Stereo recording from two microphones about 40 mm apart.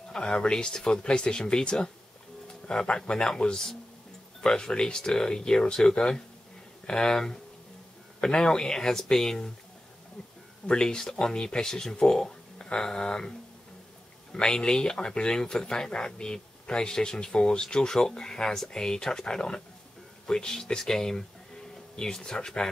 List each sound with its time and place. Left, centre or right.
0.1 s speech: centre
10.7 s speech: left
14.3 s speech: left